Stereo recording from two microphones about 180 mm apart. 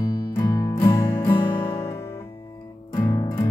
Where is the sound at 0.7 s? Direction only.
15° left (ahead or behind).